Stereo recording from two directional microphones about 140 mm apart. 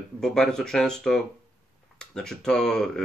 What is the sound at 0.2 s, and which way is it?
Speech, 5° left (ahead or behind).